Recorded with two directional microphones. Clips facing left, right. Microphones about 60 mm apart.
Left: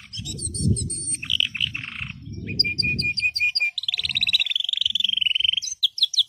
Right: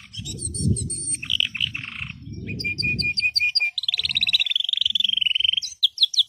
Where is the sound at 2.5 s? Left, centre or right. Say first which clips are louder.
Even; centre.